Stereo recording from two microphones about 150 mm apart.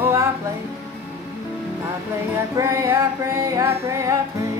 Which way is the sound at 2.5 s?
20° right (ahead or behind).